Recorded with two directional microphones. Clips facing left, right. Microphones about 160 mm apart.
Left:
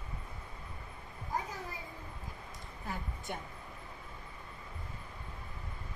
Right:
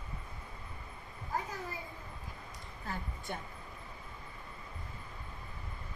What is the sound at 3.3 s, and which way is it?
Speech, 10° left (ahead or behind).